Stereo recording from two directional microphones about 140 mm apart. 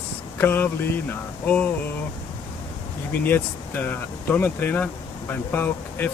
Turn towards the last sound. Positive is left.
turn(degrees=15)  # may be behind; listen again after turning